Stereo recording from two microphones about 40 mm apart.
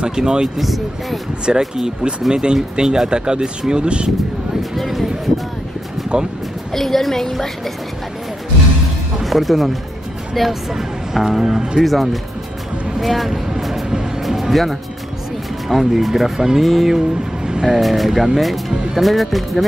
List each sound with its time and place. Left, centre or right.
0.0 s speech: centre
0.6 s speech: centre
1.5 s speech: centre
4.7 s speech: centre
6.1 s speech: right
6.7 s a woman's voice: centre
9.2 s speech: centre
13.5 s vehicle: centre
14.2 s music: centre
15.7 s speech: centre